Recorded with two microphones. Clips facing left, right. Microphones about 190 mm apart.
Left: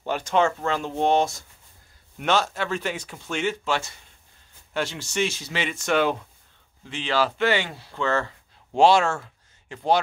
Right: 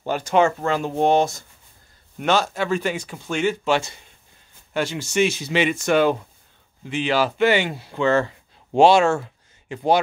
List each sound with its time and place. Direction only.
0.0 s speech: 5° right (ahead or behind)